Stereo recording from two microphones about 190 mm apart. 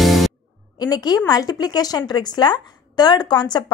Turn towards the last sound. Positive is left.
turn(degrees=20)  # may be behind; listen again after turning